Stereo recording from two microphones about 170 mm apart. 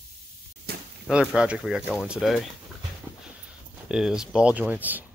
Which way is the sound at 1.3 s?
5° right (ahead or behind).